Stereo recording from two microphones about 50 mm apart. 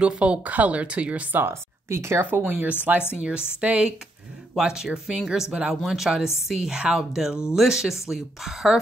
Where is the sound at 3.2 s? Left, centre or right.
Right; by 8.7 s centre.